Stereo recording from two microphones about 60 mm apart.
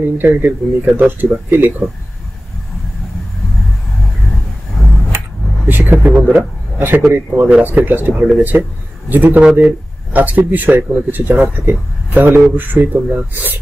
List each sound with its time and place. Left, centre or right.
0.0 s speech: right
5.7 s vehicle: right
6.3 s a man's voice: right